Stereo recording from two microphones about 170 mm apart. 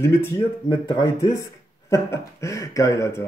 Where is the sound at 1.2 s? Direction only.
15° left (ahead or behind).